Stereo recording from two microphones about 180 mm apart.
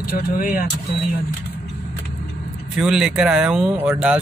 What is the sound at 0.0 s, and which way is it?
Speech, 50° left (ahead or behind).